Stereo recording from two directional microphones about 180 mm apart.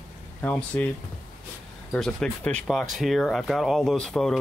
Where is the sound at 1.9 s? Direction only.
5° left (ahead or behind).